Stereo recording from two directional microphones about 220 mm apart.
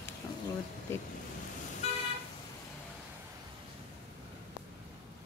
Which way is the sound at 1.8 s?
30° left (ahead or behind).